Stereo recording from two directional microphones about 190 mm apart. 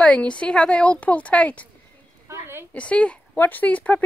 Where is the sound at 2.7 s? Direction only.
5° left (ahead or behind).